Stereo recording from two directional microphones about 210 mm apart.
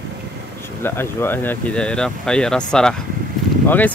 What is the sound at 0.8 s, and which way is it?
Speech, 10° left (ahead or behind).